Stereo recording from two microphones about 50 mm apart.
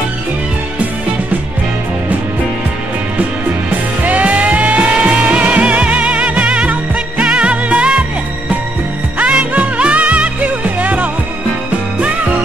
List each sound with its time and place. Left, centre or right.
4.0 s music: right
9.2 s music: right